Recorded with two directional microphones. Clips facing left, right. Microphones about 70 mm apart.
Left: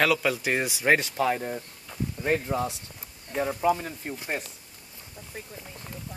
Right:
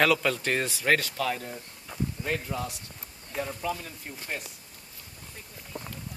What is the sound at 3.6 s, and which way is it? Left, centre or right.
Speech, left.